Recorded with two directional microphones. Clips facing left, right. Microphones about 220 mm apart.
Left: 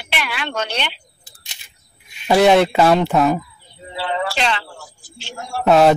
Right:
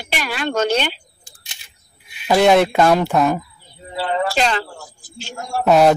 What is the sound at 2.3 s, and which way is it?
Speech, centre (ahead or behind).